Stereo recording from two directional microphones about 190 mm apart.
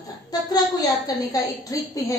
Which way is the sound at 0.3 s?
20° left (ahead or behind).